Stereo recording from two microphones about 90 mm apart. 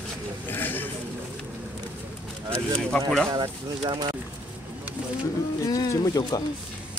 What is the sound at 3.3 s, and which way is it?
Speech, 50° right (ahead or behind).